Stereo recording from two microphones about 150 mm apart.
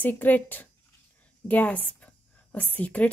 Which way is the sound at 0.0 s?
10° left (ahead or behind).